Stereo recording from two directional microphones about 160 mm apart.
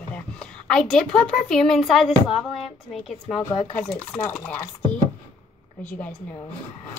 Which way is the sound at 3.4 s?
10° left (ahead or behind).